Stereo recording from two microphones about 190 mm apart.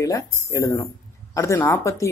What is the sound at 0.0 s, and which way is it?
Speech, 15° left (ahead or behind).